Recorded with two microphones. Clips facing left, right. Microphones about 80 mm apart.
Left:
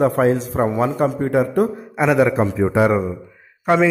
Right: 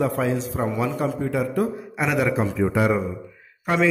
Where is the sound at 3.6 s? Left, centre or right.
Left.